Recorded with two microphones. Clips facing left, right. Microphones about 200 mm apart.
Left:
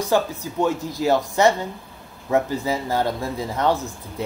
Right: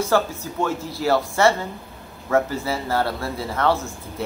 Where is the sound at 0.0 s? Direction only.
15° left (ahead or behind).